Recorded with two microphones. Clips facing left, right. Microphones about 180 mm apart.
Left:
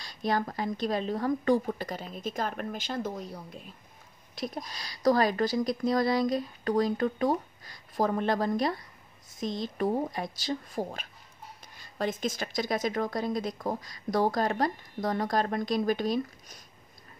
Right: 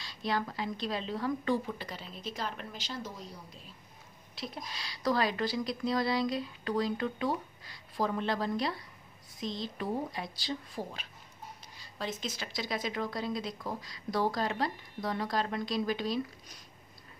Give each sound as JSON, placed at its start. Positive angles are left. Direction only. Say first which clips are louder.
{"t": 0.0, "sound": "speech", "louder": "left 4 dB", "side_deg": 45}